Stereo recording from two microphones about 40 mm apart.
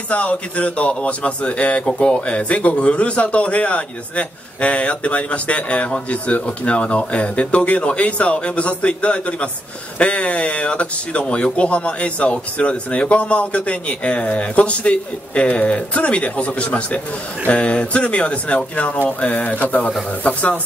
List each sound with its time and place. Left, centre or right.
0.1 s a man's voice: left